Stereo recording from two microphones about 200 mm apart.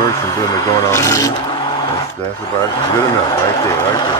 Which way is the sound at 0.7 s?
15° left (ahead or behind).